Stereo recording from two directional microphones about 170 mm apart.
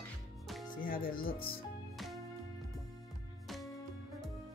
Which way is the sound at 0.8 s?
55° left (ahead or behind).